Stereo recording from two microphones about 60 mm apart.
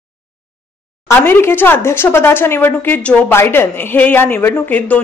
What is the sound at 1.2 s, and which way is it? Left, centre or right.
Speech, left.